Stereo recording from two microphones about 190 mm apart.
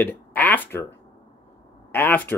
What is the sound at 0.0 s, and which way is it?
Speech, 10° left (ahead or behind).